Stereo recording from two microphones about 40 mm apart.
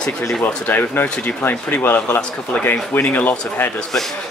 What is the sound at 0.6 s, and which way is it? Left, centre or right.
A man's voice, left.